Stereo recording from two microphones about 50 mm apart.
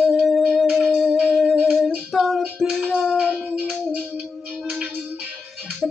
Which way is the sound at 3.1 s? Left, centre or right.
Centre.